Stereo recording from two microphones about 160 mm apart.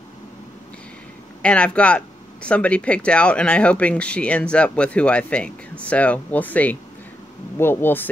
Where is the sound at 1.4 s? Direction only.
5° left (ahead or behind).